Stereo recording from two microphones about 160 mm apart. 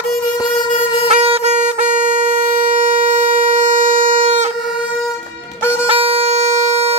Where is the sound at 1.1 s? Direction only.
40° right (ahead or behind).